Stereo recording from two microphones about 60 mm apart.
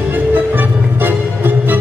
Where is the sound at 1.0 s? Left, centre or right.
Right.